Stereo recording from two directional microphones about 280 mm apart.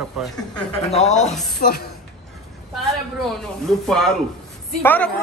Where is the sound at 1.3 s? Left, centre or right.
Centre.